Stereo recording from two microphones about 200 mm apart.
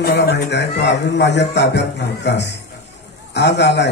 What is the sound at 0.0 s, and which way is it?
A man's voice, 55° left (ahead or behind).